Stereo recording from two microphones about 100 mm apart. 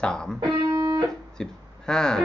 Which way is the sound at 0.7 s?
35° right (ahead or behind).